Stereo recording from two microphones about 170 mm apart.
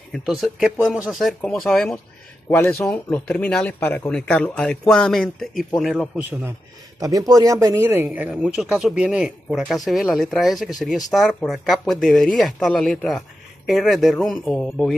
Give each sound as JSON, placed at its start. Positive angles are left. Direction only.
{"t": 0.1, "sound": "speech", "side_deg": 0}
{"t": 7.0, "sound": "speech", "side_deg": -20}
{"t": 8.3, "sound": "speech", "side_deg": 0}